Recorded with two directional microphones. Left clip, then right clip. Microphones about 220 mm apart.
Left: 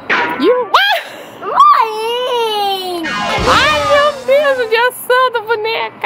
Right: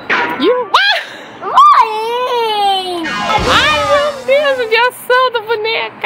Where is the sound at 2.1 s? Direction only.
15° right (ahead or behind).